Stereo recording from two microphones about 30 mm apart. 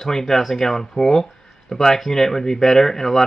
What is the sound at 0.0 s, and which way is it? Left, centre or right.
Speech, centre.